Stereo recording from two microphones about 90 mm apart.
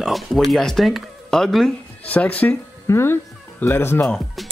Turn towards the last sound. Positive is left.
turn(degrees=5)  # may be behind; listen again after turning